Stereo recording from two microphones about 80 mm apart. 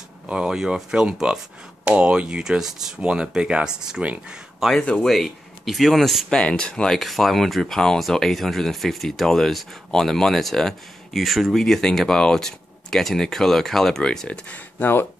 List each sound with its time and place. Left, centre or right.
0.3 s speech: centre
4.8 s speech: centre
5.1 s speech: centre
14.8 s speech: left